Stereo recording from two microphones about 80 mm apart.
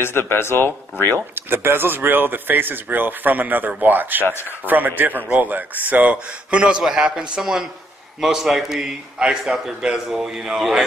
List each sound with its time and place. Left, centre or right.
0.0 s speech: left
1.3 s a man's voice: right; by 10.9 s centre